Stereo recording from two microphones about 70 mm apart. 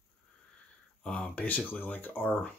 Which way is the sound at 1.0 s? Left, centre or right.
Centre.